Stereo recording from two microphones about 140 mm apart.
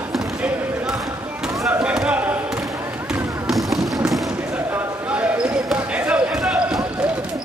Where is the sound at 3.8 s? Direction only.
25° right (ahead or behind).